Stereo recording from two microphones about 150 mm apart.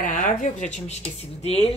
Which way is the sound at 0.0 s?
60° left (ahead or behind).